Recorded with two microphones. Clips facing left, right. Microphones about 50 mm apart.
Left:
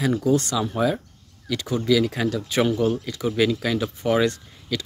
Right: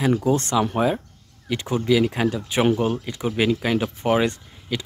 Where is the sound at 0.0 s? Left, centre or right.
Right.